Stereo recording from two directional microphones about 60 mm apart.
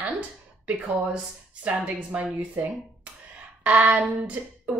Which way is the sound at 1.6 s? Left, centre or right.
Right.